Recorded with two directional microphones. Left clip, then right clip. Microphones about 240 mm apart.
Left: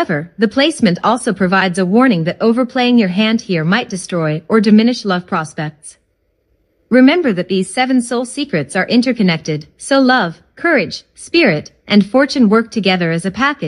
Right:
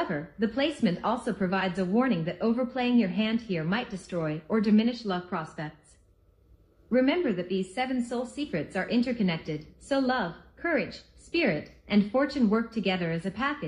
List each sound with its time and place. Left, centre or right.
0.0 s a woman's voice: left
6.9 s a woman's voice: left